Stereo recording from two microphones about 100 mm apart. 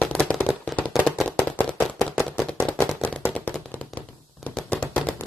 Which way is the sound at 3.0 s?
15° left (ahead or behind).